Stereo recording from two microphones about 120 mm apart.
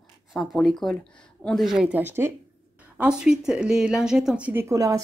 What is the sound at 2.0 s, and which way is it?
Speech, 20° right (ahead or behind).